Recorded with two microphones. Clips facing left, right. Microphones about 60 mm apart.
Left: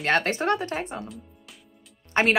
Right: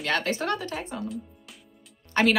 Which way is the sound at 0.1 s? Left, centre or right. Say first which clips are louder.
Left 4 dB; left.